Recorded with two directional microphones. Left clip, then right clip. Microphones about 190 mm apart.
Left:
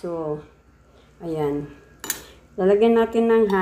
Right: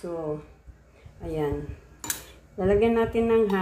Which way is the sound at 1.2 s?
30° left (ahead or behind).